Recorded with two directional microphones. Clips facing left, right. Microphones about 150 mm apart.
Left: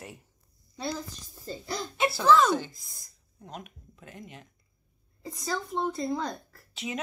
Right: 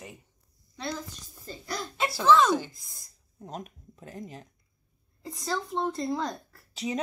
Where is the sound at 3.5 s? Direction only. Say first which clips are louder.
Right 3 dB; 35° right (ahead or behind).